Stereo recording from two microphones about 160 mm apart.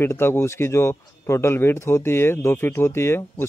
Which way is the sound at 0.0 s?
15° left (ahead or behind).